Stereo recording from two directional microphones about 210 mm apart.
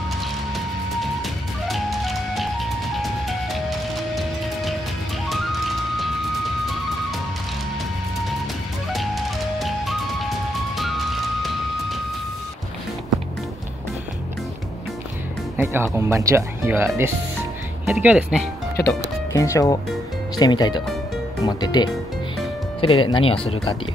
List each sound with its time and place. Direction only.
1.7 s music: centre (ahead or behind)
6.6 s music: centre (ahead or behind)
8.9 s music: centre (ahead or behind)
15.5 s speech: 10° right (ahead or behind)
19.3 s speech: 15° left (ahead or behind)